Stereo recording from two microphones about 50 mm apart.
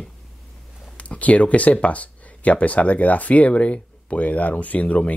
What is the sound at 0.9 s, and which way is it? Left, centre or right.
Speech, left.